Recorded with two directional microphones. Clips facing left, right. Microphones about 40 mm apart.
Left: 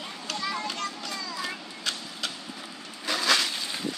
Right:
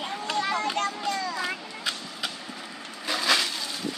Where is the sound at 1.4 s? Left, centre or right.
Centre.